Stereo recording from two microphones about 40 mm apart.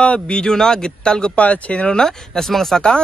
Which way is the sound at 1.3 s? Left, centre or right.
Left.